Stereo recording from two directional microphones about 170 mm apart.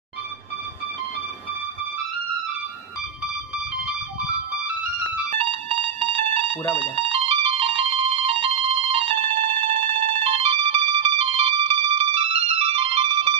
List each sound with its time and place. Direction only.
5.3 s a sound: 35° right (ahead or behind)
6.5 s speech: 10° left (ahead or behind)
6.8 s music: 35° right (ahead or behind)